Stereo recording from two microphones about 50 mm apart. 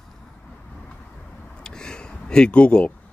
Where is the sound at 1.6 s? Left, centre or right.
Centre.